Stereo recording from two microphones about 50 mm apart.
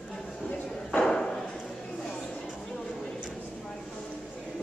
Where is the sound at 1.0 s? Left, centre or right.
Centre.